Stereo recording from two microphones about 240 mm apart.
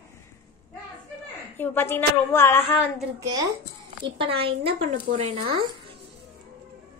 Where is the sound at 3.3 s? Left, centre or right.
Centre.